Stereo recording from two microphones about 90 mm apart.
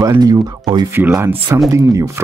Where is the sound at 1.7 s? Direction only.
35° right (ahead or behind).